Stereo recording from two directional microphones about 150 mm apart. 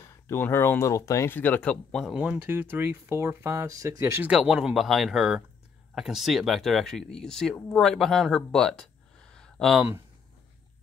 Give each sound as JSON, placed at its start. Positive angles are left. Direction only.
{"t": 0.0, "sound": "speech", "side_deg": 15}